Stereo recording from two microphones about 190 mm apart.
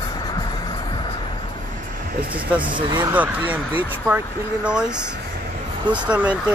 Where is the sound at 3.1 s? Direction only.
10° right (ahead or behind).